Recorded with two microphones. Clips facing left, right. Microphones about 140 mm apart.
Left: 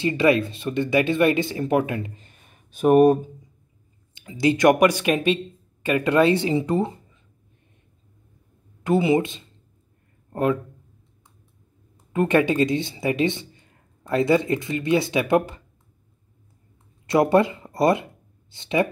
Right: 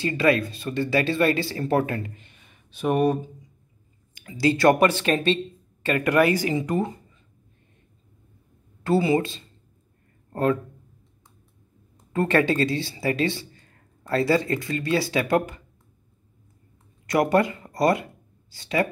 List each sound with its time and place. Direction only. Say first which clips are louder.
0.0 s speech: left 2 dB; 20° left (ahead or behind)
2.1 s a sound: left 1 dB; 40° left (ahead or behind)
4.1 s speech: left 1 dB; 20° left (ahead or behind)
8.8 s speech: left 2 dB; 20° left (ahead or behind)
12.1 s speech: left 2 dB; 15° left (ahead or behind)
17.0 s speech: left 3 dB; 25° left (ahead or behind)